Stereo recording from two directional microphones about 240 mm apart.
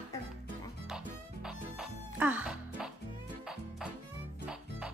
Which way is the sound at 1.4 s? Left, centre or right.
Centre.